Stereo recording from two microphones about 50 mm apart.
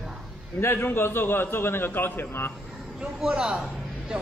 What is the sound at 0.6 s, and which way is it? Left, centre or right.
A man's voice, left.